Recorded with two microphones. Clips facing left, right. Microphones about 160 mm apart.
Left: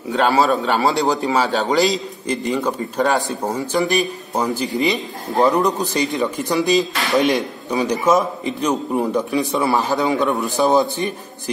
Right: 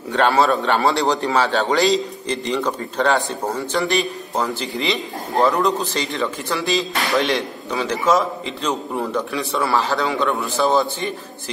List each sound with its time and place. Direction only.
0.1 s a man's voice: 5° left (ahead or behind)